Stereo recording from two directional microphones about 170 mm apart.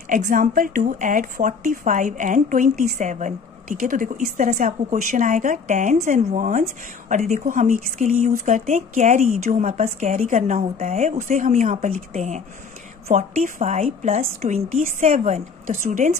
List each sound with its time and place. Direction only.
0.1 s speech: 50° right (ahead or behind)